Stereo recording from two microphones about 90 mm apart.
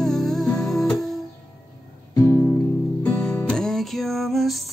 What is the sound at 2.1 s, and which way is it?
Music, 40° left (ahead or behind).